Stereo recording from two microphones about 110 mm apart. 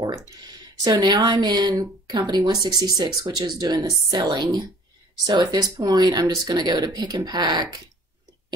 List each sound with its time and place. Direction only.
0.3 s speech: 35° right (ahead or behind)